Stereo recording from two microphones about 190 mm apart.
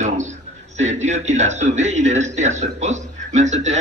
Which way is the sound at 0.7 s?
40° right (ahead or behind).